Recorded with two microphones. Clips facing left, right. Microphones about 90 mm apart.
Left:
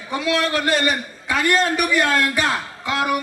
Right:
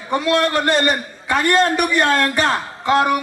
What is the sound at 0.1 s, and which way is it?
A man's voice, 45° right (ahead or behind).